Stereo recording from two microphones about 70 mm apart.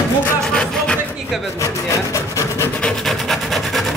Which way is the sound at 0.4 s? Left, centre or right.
Centre.